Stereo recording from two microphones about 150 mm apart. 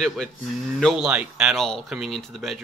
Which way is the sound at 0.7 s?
Centre (ahead or behind).